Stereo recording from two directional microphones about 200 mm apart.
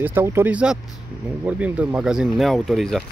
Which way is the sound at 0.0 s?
10° right (ahead or behind).